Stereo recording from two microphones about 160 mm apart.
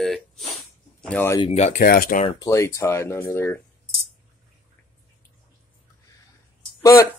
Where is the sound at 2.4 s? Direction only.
20° left (ahead or behind).